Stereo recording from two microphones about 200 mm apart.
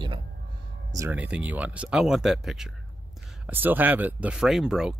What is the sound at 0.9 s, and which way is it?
Speech, 10° right (ahead or behind).